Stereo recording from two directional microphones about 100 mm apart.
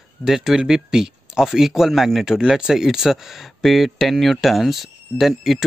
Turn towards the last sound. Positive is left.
turn(degrees=0)  # may be behind; listen again after turning